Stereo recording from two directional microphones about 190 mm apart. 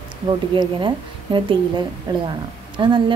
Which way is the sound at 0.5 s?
25° right (ahead or behind).